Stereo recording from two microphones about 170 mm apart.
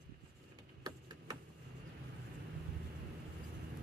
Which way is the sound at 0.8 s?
25° right (ahead or behind).